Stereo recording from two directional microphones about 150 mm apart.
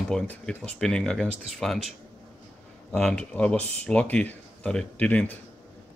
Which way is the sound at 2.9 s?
5° left (ahead or behind).